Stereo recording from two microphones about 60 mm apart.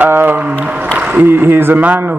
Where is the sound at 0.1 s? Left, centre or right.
Right.